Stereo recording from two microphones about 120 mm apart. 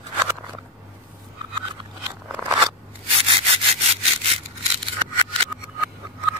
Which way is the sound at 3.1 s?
55° right (ahead or behind).